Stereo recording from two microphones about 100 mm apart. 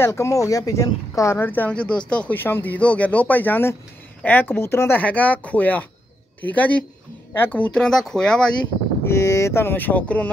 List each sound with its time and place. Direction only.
0.0 s speech: 30° left (ahead or behind); by 8.5 s 5° left (ahead or behind)
9.0 s speech: 30° left (ahead or behind)